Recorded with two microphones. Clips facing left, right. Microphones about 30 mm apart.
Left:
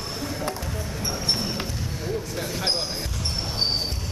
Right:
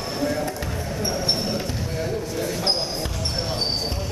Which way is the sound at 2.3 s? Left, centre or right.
Centre.